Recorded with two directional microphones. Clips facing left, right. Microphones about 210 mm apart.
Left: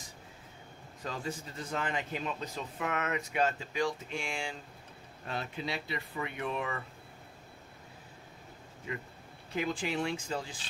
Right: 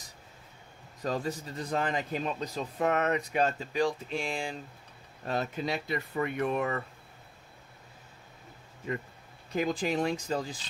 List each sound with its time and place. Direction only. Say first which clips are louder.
1.0 s a man's voice: right 6 dB; 40° right (ahead or behind)
9.6 s a man's voice: right 4 dB; 40° right (ahead or behind)